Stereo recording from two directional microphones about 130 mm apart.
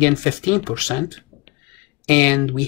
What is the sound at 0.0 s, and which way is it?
Speech, 10° left (ahead or behind).